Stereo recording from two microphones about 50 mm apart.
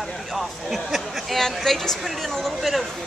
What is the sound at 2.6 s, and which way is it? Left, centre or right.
Speech, centre.